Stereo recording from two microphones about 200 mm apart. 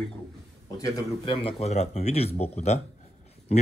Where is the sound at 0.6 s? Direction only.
15° left (ahead or behind); by 2.8 s 30° left (ahead or behind).